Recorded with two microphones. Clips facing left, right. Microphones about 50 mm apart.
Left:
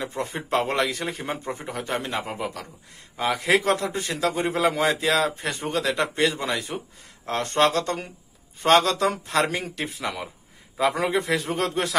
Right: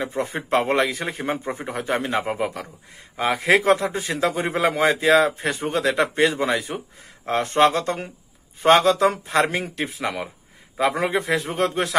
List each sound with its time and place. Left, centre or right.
0.1 s a man's voice: centre
3.4 s a man's voice: centre
6.1 s a man's voice: centre